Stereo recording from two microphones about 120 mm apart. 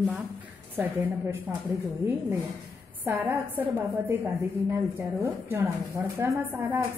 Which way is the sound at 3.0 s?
15° right (ahead or behind).